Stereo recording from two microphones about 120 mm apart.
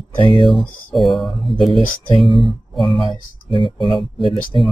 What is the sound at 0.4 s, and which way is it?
Speech, centre (ahead or behind).